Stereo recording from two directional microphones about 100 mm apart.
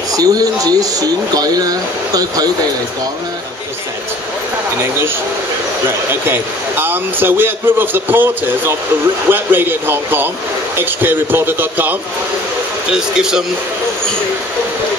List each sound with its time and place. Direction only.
0.1 s speech: 40° right (ahead or behind)
5.9 s a man's voice: 20° right (ahead or behind)
12.9 s speech: 5° right (ahead or behind)